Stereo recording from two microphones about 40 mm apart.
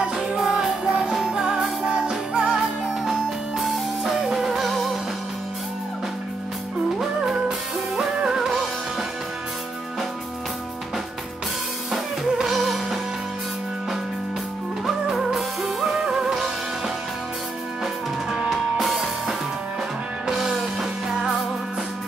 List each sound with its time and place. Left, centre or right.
0.3 s music: centre
3.1 s music: centre
4.6 s music: centre
7.4 s music: centre
11.9 s music: centre
14.9 s music: centre
18.5 s music: centre